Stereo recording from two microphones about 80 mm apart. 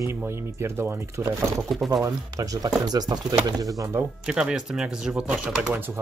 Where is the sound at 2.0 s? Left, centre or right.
Right.